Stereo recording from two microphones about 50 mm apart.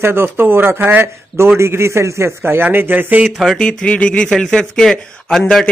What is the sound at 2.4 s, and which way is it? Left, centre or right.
Speech, right.